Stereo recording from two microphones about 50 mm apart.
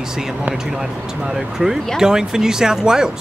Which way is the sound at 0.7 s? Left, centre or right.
Centre.